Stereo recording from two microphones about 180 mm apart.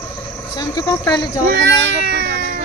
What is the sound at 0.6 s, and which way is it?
Speech, 20° left (ahead or behind).